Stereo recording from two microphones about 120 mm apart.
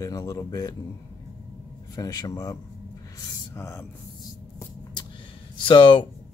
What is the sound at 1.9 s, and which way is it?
Speech, 35° left (ahead or behind).